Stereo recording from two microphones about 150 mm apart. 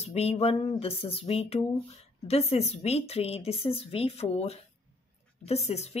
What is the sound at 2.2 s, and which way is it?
Speech, 45° left (ahead or behind).